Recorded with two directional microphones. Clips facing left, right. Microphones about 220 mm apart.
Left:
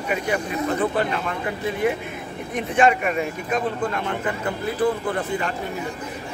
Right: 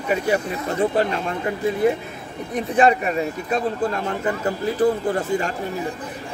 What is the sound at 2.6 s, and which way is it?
Speech, 35° right (ahead or behind).